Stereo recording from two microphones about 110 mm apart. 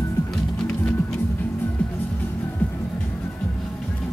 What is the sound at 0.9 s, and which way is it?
Music, 20° left (ahead or behind).